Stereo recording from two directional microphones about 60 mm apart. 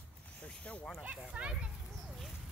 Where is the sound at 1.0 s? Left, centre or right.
Centre.